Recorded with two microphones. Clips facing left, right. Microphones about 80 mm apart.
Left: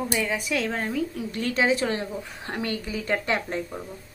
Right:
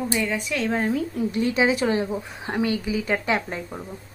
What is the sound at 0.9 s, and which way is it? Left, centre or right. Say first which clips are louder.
Speech: right 3 dB; right.